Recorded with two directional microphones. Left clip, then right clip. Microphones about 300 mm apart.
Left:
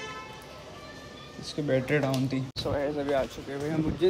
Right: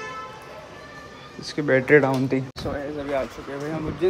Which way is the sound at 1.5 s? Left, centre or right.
Centre.